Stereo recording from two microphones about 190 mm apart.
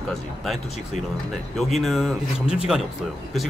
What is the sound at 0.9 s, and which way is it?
Speech, 40° left (ahead or behind).